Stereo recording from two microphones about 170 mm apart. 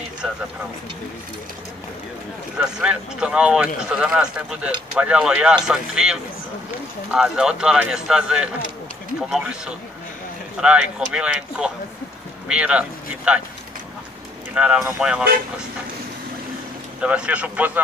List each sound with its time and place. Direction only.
2.6 s speech: 5° right (ahead or behind)
14.5 s speech: 5° right (ahead or behind)
17.0 s speech: 5° right (ahead or behind)